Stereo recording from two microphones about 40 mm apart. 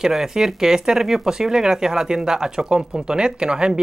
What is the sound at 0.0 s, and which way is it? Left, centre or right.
Speech, centre.